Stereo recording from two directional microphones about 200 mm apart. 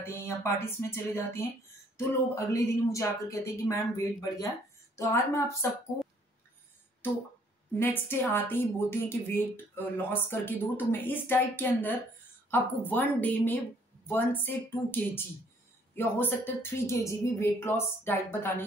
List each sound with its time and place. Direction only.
0.0 s a woman's voice: 10° left (ahead or behind)
7.7 s a woman's voice: 10° left (ahead or behind)